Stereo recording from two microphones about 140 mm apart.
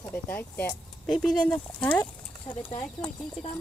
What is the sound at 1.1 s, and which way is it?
Speech, 5° left (ahead or behind).